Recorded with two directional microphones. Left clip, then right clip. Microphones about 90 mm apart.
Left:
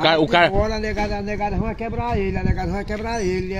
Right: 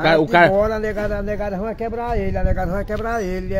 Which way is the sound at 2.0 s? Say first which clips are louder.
Left 3 dB; 40° right (ahead or behind).